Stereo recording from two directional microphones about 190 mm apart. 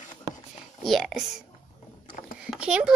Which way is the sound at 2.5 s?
5° right (ahead or behind).